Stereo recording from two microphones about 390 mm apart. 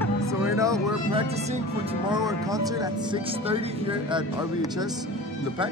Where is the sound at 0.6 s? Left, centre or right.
Centre.